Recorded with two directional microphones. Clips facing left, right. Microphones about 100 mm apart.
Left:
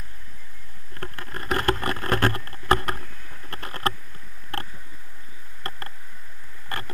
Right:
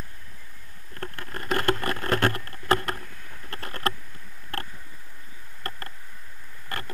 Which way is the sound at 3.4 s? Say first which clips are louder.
Left 2 dB; 30° left (ahead or behind).